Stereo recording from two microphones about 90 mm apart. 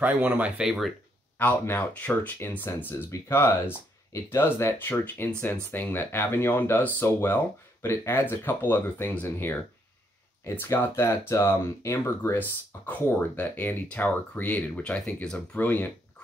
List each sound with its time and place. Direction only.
0.0 s speech: 15° right (ahead or behind)
1.4 s speech: 20° left (ahead or behind)